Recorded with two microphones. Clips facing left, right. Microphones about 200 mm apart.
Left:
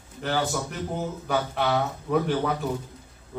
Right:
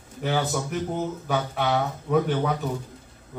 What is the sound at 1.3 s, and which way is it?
A man's voice, centre (ahead or behind).